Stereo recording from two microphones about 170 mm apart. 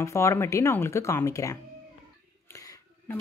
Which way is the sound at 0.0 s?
15° left (ahead or behind).